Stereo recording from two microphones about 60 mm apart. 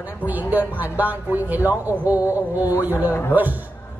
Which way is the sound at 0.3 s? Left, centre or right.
Right.